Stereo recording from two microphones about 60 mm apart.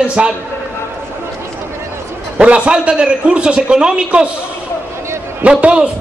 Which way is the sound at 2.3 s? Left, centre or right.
Centre.